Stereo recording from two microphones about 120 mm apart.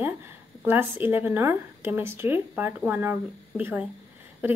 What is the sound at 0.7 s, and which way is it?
Speech, 20° right (ahead or behind).